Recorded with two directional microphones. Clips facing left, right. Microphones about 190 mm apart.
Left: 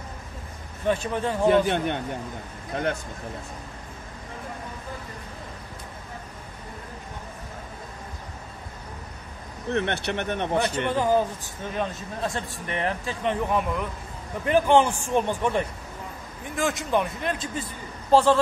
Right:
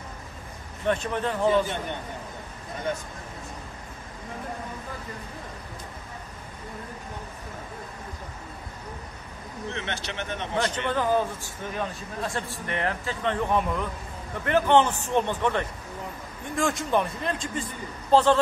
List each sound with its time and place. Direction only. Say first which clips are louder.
0.8 s a man's voice: left 1 dB; 10° left (ahead or behind)
1.5 s a man's voice: left 4 dB; 65° left (ahead or behind)
9.7 s speech: left 8 dB; 60° left (ahead or behind)
10.9 s a man's voice: left 2 dB; 15° left (ahead or behind)
13.5 s a man's voice: even; centre (ahead or behind)
16.5 s a man's voice: even; centre (ahead or behind)